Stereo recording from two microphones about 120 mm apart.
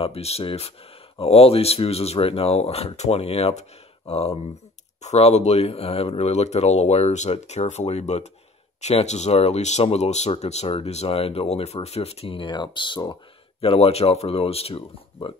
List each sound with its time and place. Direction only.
0.0 s speech: 60° left (ahead or behind); by 13.0 s 40° left (ahead or behind)
13.1 s speech: 50° left (ahead or behind)